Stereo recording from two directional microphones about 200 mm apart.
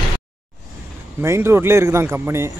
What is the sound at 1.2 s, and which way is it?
Speech, 15° right (ahead or behind).